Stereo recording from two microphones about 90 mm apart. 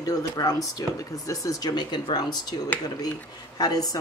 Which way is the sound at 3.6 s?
45° left (ahead or behind).